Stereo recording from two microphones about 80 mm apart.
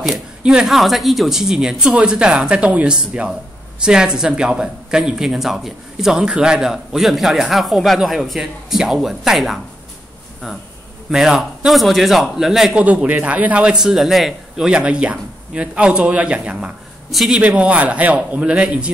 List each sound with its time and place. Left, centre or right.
0.0 s a sound: centre
0.7 s speech: centre
11.1 s speech: centre
12.8 s speech: centre
14.7 s speech: centre
17.1 s speech: centre
17.4 s speech: centre